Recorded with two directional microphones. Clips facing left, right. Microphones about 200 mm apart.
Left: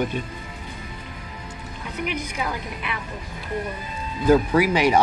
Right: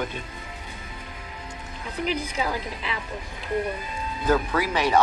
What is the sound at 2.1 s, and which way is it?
Speech, 30° right (ahead or behind).